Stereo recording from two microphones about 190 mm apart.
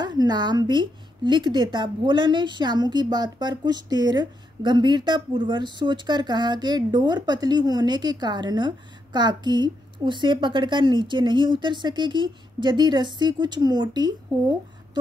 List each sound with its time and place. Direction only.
0.0 s a woman's voice: 20° right (ahead or behind)